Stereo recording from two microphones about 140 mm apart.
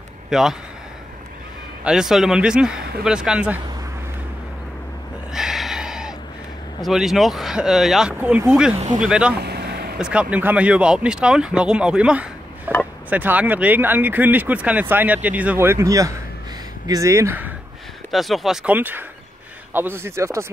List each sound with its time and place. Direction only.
0.3 s a man's voice: 5° right (ahead or behind)
1.9 s speech: 5° right (ahead or behind)
5.3 s a sound: 5° right (ahead or behind)
6.8 s speech: centre (ahead or behind)
8.7 s speech: 55° right (ahead or behind)
9.0 s speech: 5° right (ahead or behind)
18.1 s speech: centre (ahead or behind); by 20.5 s 20° right (ahead or behind)